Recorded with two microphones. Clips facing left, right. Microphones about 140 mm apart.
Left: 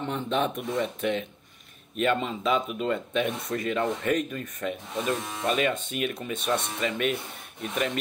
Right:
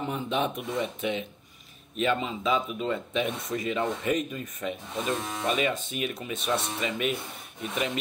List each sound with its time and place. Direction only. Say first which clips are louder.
0.0 s speech: left 1 dB; 10° right (ahead or behind)
5.5 s speech: left 2 dB; 5° right (ahead or behind)